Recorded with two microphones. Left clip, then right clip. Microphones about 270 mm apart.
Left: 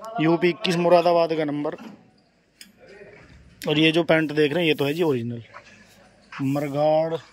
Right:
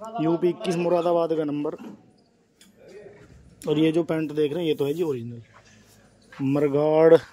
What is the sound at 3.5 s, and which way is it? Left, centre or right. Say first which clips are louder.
Speech: left 2 dB; centre.